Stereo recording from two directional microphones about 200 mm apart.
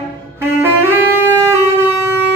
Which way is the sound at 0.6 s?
10° right (ahead or behind).